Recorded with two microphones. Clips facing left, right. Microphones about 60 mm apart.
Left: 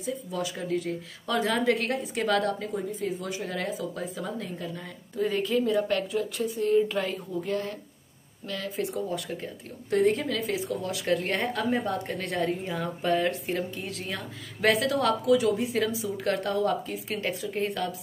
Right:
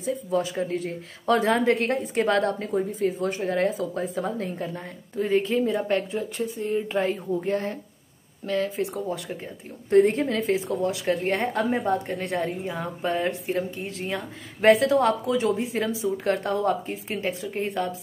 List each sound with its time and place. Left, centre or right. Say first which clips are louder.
0.0 s a woman's voice: right 6 dB; right
12.2 s a woman's voice: right 1 dB; centre